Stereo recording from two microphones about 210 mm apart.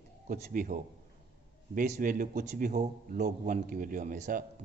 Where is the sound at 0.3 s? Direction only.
40° right (ahead or behind).